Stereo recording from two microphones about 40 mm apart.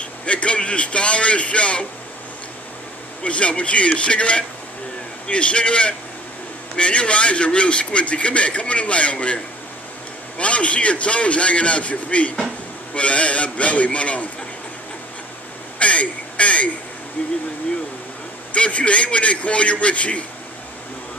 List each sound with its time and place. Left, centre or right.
0.0 s a man's voice: left
3.3 s a man's voice: left
15.8 s a sound: left
17.2 s a man's voice: left
18.5 s a man's voice: left